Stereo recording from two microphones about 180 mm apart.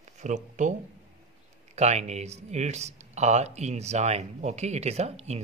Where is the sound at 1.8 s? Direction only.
40° right (ahead or behind).